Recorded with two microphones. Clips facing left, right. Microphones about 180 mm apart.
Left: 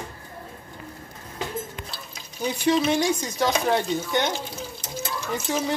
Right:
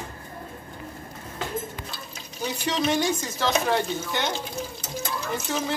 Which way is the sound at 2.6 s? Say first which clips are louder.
Left 3 dB; 10° left (ahead or behind).